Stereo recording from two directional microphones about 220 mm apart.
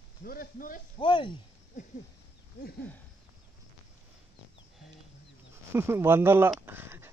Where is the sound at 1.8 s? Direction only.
35° left (ahead or behind).